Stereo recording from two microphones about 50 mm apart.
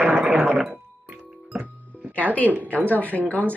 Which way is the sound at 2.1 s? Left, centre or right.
Left.